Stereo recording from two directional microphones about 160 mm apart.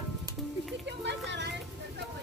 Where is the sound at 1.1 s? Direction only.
90° right.